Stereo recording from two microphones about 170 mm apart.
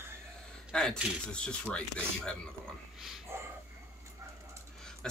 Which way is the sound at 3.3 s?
15° right (ahead or behind).